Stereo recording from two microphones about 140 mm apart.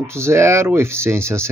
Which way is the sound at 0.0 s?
20° right (ahead or behind).